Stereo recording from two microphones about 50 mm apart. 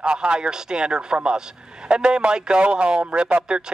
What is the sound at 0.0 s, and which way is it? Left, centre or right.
A man's voice, centre.